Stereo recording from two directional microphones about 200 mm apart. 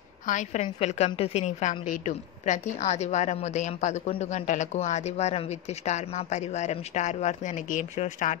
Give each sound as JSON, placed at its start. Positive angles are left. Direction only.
{"t": 0.3, "sound": "a woman's voice", "side_deg": 40}